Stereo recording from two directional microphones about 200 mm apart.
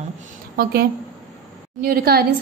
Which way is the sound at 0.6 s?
50° right (ahead or behind).